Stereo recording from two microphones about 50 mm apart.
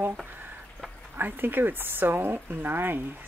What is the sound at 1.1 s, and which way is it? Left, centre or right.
Speech, right.